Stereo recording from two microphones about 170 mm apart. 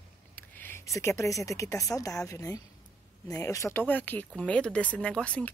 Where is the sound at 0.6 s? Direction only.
15° left (ahead or behind).